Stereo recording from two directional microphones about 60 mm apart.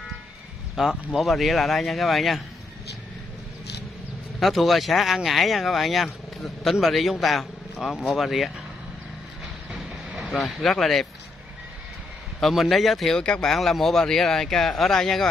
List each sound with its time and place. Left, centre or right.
0.7 s speech: centre
4.4 s speech: centre
9.7 s train: centre
10.3 s speech: centre
12.4 s speech: centre
13.1 s speech: centre